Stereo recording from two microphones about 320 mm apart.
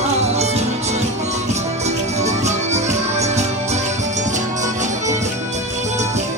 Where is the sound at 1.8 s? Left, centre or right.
Right.